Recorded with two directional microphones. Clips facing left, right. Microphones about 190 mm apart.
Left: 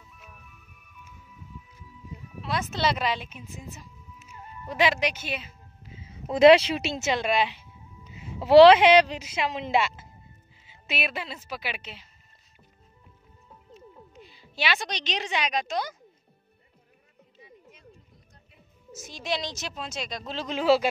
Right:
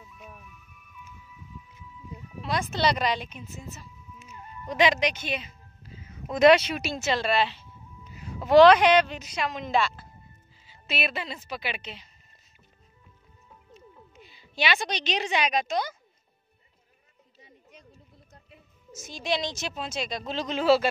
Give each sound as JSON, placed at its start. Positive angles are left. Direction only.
{"t": 2.4, "sound": "speech", "side_deg": 0}
{"t": 5.9, "sound": "a woman's voice", "side_deg": 30}
{"t": 14.1, "sound": "a woman's voice", "side_deg": 0}
{"t": 18.9, "sound": "speech", "side_deg": 0}